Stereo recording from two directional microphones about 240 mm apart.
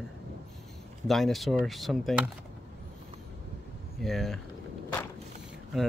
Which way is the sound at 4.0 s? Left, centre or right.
Centre.